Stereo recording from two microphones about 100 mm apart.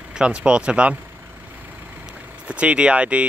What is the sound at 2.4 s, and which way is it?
Speech, 10° right (ahead or behind).